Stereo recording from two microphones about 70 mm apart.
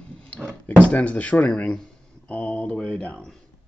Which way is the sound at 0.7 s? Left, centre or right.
Left.